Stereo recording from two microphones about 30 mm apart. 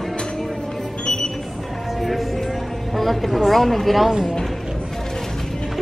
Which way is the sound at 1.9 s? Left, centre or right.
Centre.